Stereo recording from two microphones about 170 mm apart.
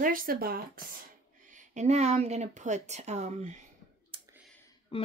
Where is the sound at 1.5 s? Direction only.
45° right (ahead or behind).